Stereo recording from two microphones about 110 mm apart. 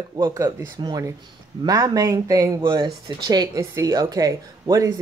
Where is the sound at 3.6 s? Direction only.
30° right (ahead or behind).